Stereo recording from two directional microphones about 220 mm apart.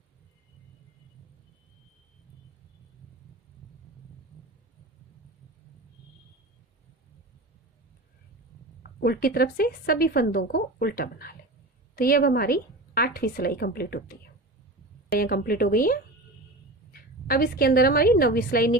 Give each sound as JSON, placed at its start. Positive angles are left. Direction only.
{"t": 9.0, "sound": "a woman's voice", "side_deg": 45}